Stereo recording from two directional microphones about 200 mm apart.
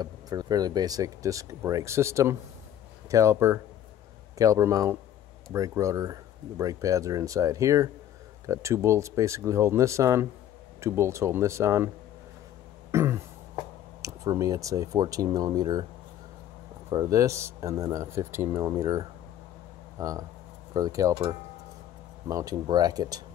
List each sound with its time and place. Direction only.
0.0 s speech: 20° right (ahead or behind)
12.9 s throat clearing: 15° right (ahead or behind)
14.0 s speech: 15° right (ahead or behind)
16.9 s speech: 15° right (ahead or behind)